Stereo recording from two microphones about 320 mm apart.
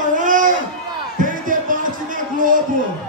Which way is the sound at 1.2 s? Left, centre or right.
Right.